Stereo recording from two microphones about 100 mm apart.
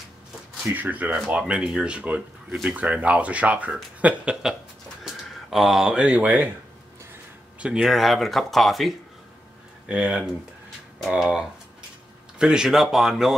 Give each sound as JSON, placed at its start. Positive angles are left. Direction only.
{"t": 0.7, "sound": "speech", "side_deg": -15}
{"t": 1.1, "sound": "speech", "side_deg": -5}
{"t": 7.6, "sound": "speech", "side_deg": -5}
{"t": 9.8, "sound": "speech", "side_deg": -10}